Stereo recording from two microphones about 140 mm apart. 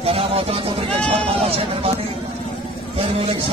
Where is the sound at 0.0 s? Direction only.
45° right (ahead or behind).